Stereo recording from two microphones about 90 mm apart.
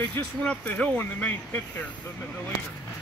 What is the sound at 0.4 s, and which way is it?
Speech, 15° left (ahead or behind).